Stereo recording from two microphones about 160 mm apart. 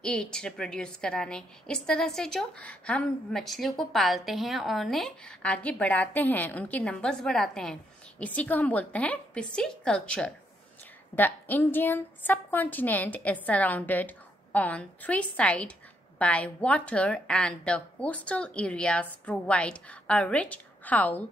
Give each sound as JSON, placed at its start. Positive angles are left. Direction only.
{"t": 0.0, "sound": "a woman's voice", "side_deg": 5}